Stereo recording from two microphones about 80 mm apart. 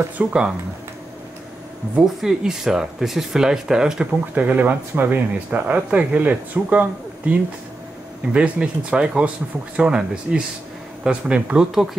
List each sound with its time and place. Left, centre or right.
0.2 s speech: centre
2.0 s speech: centre